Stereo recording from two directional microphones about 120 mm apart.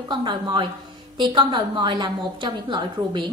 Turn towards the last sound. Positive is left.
turn(degrees=-40)  # may be behind; listen again after turning